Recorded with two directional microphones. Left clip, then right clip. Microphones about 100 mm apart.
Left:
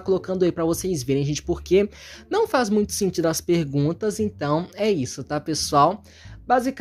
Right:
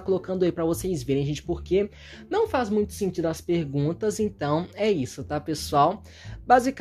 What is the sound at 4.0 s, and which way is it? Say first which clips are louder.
Speech: left 1 dB; 15° left (ahead or behind).